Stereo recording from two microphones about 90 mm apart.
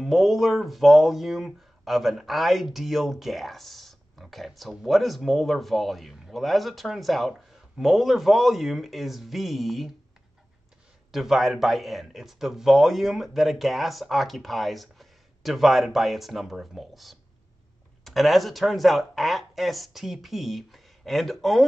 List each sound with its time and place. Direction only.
0.0 s speech: centre (ahead or behind)
11.1 s speech: 5° right (ahead or behind)